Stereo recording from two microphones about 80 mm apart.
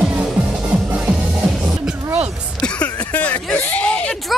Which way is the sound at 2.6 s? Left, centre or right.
Centre.